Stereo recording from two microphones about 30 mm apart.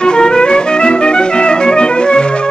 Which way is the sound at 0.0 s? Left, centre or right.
Left.